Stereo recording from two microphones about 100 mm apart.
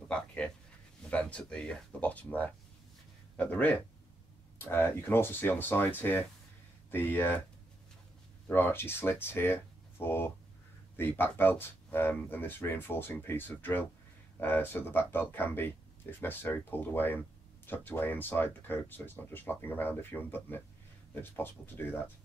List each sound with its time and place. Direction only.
0.1 s a sound: 10° left (ahead or behind)
1.1 s speech: 10° left (ahead or behind)
8.5 s speech: 20° left (ahead or behind)